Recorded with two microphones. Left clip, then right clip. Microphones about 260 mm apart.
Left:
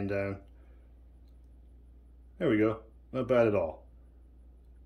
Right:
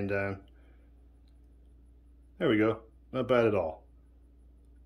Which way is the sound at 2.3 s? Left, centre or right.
Centre.